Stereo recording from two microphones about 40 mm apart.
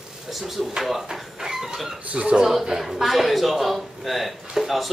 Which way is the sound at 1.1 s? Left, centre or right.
Centre.